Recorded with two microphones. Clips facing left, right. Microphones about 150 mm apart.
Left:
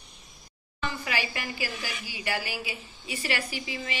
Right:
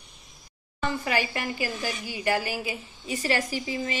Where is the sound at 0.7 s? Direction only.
45° right (ahead or behind).